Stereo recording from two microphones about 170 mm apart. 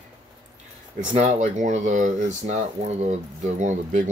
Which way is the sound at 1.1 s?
45° right (ahead or behind).